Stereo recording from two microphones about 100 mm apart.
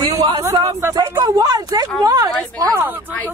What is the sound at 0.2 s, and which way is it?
Speech, 40° right (ahead or behind).